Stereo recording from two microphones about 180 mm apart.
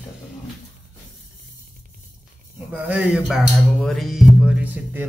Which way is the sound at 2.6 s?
10° right (ahead or behind).